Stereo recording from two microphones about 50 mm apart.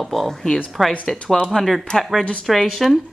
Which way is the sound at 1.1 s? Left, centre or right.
Centre.